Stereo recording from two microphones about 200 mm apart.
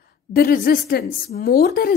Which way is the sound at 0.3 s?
50° left (ahead or behind).